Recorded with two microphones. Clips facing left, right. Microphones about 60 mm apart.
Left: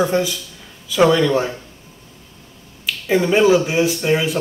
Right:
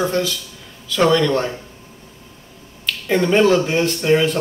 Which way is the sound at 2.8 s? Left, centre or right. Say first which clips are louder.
Left 1 dB; centre.